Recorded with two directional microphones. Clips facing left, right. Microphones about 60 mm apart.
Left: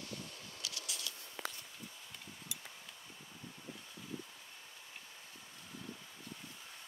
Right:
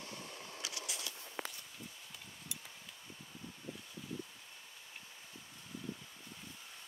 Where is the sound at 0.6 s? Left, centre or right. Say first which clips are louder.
Right 1 dB; right.